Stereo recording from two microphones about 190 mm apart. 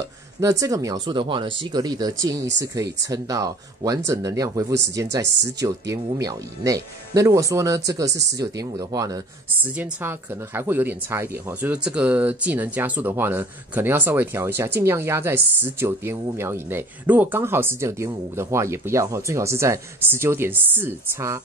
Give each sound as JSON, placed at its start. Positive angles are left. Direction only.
{"t": 0.4, "sound": "speech", "side_deg": -15}
{"t": 8.1, "sound": "speech", "side_deg": -65}
{"t": 8.4, "sound": "speech", "side_deg": -20}